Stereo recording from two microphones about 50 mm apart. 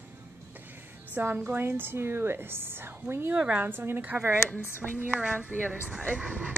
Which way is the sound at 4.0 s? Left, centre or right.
Right.